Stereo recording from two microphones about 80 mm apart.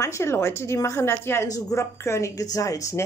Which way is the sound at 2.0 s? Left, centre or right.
Left.